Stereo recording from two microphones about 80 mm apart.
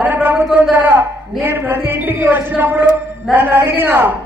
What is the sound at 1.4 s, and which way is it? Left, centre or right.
A man's voice, right.